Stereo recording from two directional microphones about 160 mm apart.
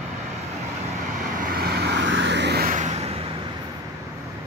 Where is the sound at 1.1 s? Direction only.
65° right (ahead or behind); by 2.7 s 85° right.